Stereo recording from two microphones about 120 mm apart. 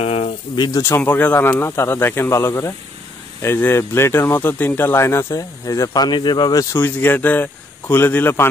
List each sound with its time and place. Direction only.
0.0 s pigeon: 60° left (ahead or behind)
0.6 s speech: 35° left (ahead or behind)
0.8 s speech: 20° left (ahead or behind)
6.8 s speech: 15° left (ahead or behind)